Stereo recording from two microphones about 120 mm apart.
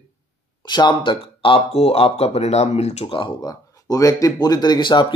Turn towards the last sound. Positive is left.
turn(degrees=40)  # may be behind; listen again after turning